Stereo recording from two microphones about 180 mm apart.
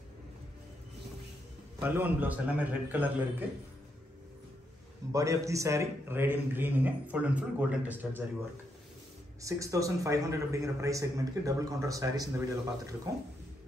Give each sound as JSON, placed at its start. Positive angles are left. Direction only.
{"t": 1.8, "sound": "a man's voice", "side_deg": -10}
{"t": 5.1, "sound": "a man's voice", "side_deg": -20}
{"t": 9.4, "sound": "a man's voice", "side_deg": -15}